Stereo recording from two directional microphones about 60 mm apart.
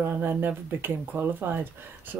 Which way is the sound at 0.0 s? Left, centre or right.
Right.